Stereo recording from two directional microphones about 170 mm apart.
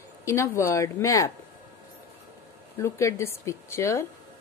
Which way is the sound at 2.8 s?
15° left (ahead or behind).